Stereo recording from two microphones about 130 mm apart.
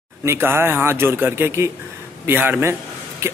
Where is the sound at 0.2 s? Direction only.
20° right (ahead or behind).